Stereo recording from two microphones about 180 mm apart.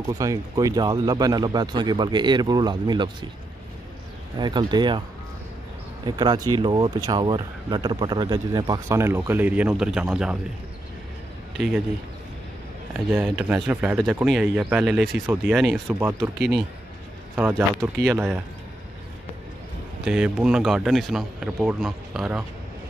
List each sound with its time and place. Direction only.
0.1 s speech: 20° right (ahead or behind)
4.4 s speech: 25° right (ahead or behind)
6.0 s speech: 25° right (ahead or behind); by 10.3 s 5° right (ahead or behind)
11.5 s speech: 5° right (ahead or behind)
13.1 s speech: 10° right (ahead or behind)
15.9 s speech: 10° right (ahead or behind)
17.4 s speech: 10° right (ahead or behind)
20.1 s speech: 5° right (ahead or behind)